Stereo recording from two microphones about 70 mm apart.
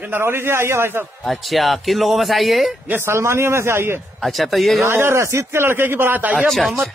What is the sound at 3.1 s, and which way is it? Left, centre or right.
Speech, right.